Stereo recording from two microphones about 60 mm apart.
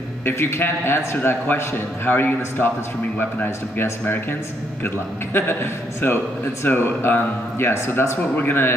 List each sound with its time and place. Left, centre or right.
0.2 s a man's voice: left
8.4 s a man's voice: left